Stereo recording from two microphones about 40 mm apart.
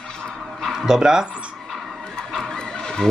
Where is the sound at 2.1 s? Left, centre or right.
Centre.